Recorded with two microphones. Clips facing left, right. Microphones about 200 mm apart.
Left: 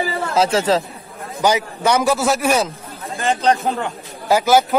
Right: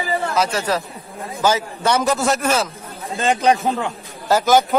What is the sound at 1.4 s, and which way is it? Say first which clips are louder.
A man's voice: left 1 dB; 15° left (ahead or behind).